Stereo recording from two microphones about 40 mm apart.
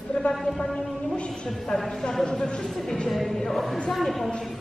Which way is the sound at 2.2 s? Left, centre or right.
Left.